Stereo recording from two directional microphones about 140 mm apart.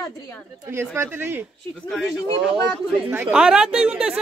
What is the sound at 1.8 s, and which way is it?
Speech, centre (ahead or behind).